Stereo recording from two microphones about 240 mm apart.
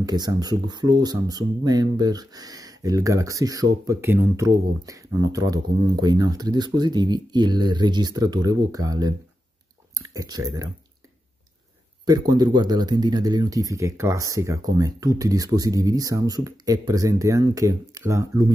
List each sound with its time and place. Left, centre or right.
0.0 s speech: centre
12.0 s speech: centre